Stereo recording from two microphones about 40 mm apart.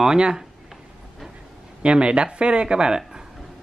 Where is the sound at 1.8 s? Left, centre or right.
Right.